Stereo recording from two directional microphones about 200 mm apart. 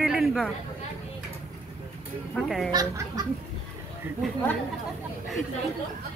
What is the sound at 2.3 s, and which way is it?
Speech, centre (ahead or behind).